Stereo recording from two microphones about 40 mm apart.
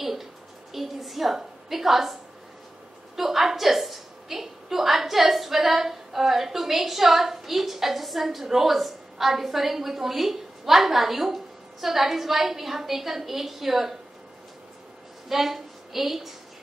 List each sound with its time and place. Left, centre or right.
0.0 s a sound: centre
3.2 s a woman's voice: centre
15.2 s a woman's voice: centre